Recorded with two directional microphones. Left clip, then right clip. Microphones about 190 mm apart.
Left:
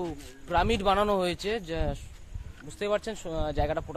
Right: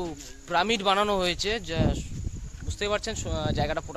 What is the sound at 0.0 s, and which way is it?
Speech, centre (ahead or behind).